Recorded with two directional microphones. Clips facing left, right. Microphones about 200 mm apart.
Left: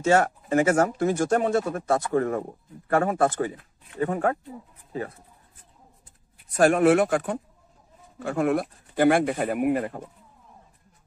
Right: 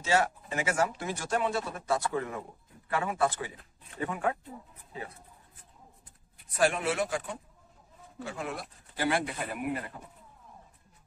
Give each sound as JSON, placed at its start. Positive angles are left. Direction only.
{"t": 0.0, "sound": "speech", "side_deg": 50}
{"t": 6.5, "sound": "speech", "side_deg": 50}